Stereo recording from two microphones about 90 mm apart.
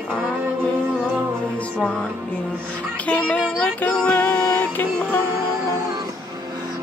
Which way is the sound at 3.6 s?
15° left (ahead or behind).